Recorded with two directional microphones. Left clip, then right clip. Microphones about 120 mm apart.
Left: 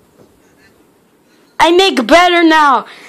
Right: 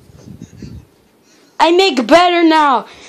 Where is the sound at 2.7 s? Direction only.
20° right (ahead or behind).